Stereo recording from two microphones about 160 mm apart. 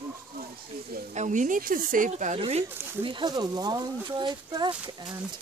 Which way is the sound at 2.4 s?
30° right (ahead or behind).